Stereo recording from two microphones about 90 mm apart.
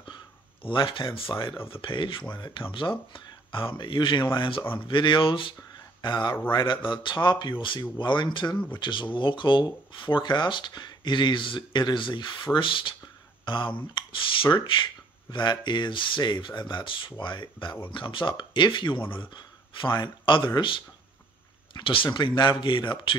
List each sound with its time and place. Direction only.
0.6 s speech: 65° left (ahead or behind)
21.7 s speech: 65° left (ahead or behind)